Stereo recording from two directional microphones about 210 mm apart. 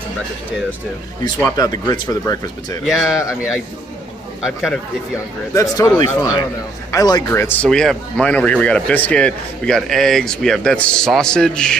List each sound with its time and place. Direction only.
1.6 s speech: 20° left (ahead or behind)
2.8 s speech: centre (ahead or behind)
4.5 s speech: centre (ahead or behind)
5.5 s a man's voice: 15° left (ahead or behind)